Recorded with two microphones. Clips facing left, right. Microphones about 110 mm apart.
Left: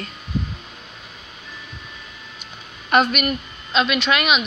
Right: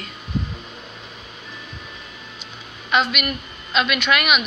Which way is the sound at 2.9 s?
45° left (ahead or behind).